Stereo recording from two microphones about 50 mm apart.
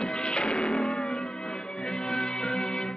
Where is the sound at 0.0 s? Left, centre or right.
Centre.